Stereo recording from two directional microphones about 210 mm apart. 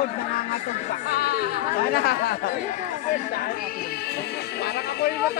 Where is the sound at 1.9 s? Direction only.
45° left (ahead or behind).